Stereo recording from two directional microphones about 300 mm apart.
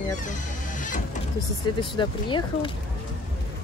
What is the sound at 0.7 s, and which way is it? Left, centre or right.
Vehicle, left.